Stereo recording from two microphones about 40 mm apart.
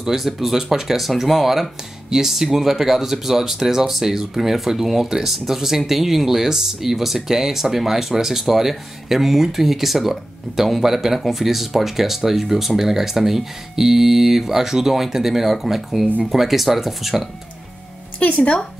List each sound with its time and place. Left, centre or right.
0.0 s speech: centre
18.2 s a woman's voice: left